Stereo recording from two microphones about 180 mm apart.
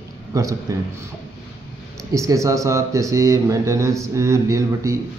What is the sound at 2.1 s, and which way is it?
A man's voice, 15° right (ahead or behind).